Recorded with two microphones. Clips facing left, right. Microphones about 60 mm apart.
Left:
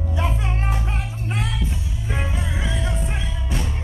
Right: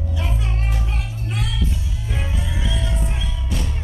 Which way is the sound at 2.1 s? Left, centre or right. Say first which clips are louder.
Left 2 dB; left.